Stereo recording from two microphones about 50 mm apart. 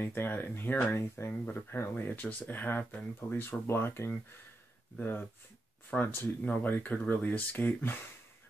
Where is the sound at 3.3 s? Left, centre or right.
Left.